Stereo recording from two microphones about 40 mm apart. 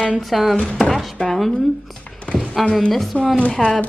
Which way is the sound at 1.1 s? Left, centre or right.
Left.